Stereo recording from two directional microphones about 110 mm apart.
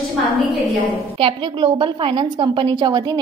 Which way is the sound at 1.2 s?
50° right (ahead or behind).